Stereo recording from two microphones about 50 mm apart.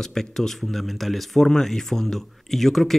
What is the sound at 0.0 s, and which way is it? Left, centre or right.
Speech, centre.